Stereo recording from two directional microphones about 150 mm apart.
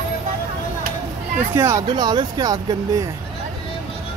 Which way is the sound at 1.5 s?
20° right (ahead or behind).